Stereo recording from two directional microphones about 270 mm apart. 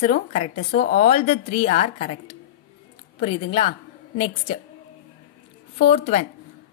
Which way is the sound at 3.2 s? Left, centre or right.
Centre.